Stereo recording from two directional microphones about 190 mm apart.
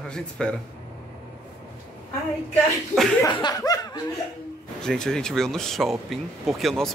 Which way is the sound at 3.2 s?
20° left (ahead or behind).